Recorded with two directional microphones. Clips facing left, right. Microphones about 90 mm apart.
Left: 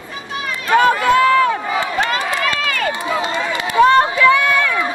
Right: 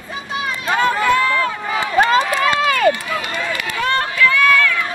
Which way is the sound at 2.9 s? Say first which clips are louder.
Left 3 dB; 25° left (ahead or behind).